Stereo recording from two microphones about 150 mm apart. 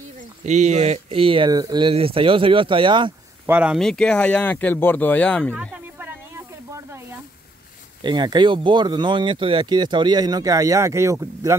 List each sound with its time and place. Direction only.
0.5 s speech: 50° right (ahead or behind); by 3.1 s 35° right (ahead or behind)
3.4 s speech: 10° right (ahead or behind)
3.8 s speech: 5° left (ahead or behind)
5.5 s snake: 10° right (ahead or behind)
8.0 s speech: 30° right (ahead or behind)